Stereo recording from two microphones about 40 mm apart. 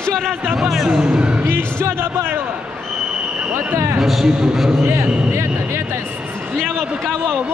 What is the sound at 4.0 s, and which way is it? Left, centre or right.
Speech, centre.